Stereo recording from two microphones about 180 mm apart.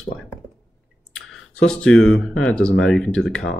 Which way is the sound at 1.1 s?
5° left (ahead or behind).